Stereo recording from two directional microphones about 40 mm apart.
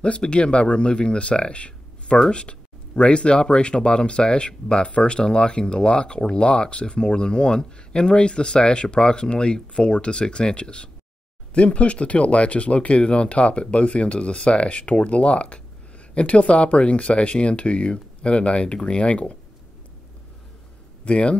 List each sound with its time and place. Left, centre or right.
0.0 s speech: left
21.0 s speech: left